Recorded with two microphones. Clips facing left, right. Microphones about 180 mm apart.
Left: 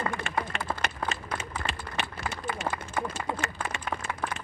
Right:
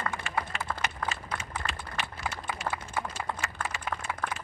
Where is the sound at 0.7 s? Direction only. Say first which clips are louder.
Left 1 dB; 25° left (ahead or behind).